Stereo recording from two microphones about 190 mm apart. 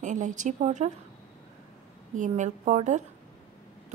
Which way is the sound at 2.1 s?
40° right (ahead or behind).